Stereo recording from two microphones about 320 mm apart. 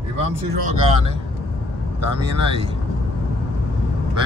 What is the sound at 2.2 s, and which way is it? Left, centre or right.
Speech, centre.